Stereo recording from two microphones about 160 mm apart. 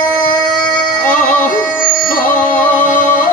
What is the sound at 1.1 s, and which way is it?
Music, 55° left (ahead or behind).